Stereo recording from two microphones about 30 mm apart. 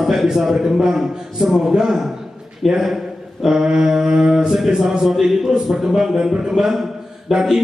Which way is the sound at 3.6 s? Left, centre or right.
Right.